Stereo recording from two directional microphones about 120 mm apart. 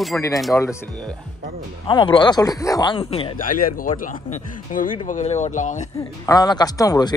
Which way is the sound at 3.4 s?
90° left.